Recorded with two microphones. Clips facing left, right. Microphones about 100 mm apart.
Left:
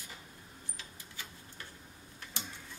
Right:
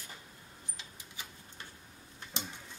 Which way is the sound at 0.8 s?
20° right (ahead or behind).